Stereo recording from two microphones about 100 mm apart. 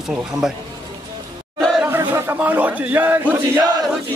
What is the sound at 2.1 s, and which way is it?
Speech, 20° right (ahead or behind).